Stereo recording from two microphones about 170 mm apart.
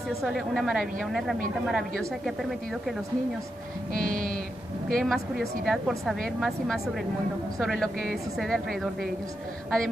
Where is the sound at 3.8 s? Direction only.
55° right (ahead or behind).